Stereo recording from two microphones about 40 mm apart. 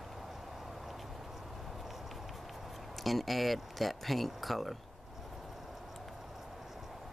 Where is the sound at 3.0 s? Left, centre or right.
Centre.